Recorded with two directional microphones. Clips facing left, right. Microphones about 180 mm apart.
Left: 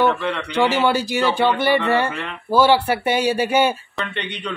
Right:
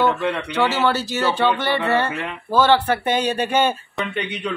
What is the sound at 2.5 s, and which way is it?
Speech, 10° left (ahead or behind).